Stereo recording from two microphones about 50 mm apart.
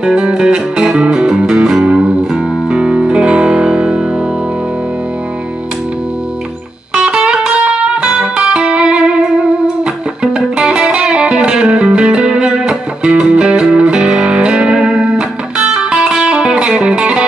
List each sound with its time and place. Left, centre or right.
0.0 s music: centre
7.2 s music: centre